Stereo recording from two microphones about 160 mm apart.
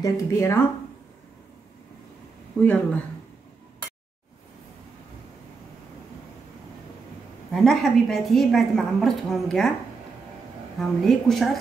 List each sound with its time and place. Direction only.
0.0 s speech: 20° left (ahead or behind)
2.6 s speech: 10° left (ahead or behind)
7.5 s a woman's voice: centre (ahead or behind)
10.8 s a woman's voice: centre (ahead or behind)